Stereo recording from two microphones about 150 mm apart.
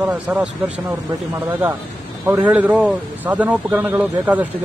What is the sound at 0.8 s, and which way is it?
Speech, 15° right (ahead or behind).